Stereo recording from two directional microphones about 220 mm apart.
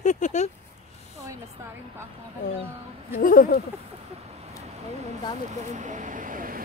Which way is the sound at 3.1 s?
40° left (ahead or behind).